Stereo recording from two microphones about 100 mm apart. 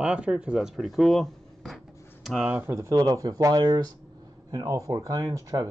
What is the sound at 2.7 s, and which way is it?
Speech, 30° right (ahead or behind).